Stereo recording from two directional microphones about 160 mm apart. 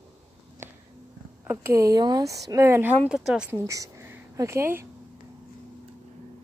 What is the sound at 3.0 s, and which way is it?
Speech, 5° right (ahead or behind).